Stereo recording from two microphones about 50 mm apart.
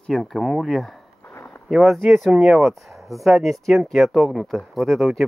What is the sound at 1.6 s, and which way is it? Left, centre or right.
Speech, centre.